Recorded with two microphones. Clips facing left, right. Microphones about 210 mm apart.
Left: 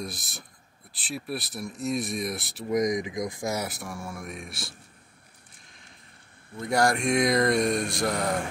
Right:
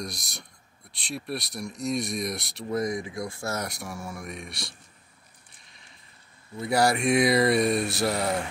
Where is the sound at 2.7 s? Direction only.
15° left (ahead or behind).